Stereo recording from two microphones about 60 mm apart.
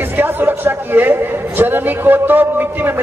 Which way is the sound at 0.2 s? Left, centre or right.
Right.